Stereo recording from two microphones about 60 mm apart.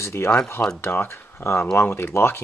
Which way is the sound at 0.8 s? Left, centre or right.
Left.